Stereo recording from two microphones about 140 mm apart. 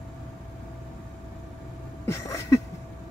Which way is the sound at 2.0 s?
20° left (ahead or behind).